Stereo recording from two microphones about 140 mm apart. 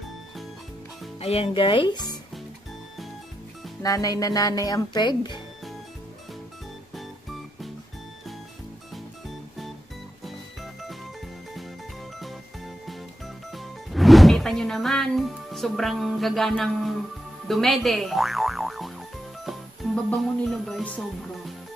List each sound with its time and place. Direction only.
1.2 s speech: 45° left (ahead or behind)
3.8 s speech: 25° left (ahead or behind)
7.0 s music: centre (ahead or behind)
10.2 s music: centre (ahead or behind)
12.2 s jingle: centre (ahead or behind)
13.5 s music: centre (ahead or behind)
17.5 s speech: centre (ahead or behind)
19.4 s music: centre (ahead or behind)